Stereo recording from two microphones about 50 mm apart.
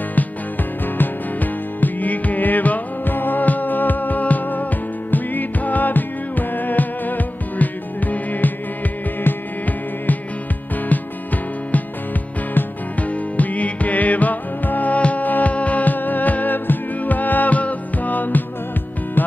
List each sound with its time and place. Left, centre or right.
0.8 s music: left
12.5 s music: left